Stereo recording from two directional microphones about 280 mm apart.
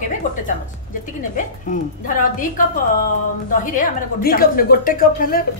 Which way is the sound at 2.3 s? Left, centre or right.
Left.